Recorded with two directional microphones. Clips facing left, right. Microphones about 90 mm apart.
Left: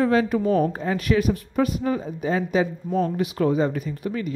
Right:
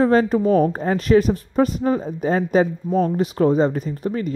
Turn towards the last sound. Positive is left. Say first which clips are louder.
# right 4 dB
turn(degrees=-35)  # may be behind; listen again after turning